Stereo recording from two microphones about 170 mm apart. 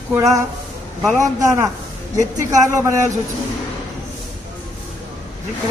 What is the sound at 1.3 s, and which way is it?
A woman's voice, 20° right (ahead or behind).